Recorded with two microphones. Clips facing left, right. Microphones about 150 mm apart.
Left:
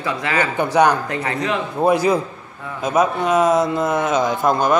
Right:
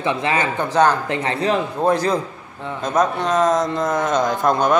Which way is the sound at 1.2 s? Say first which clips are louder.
Right 4 dB; 35° right (ahead or behind).